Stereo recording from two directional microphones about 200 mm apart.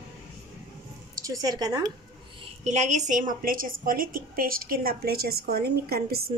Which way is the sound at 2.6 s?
35° right (ahead or behind).